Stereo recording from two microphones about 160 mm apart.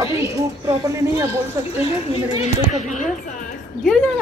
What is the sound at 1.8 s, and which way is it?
Speech, 40° left (ahead or behind).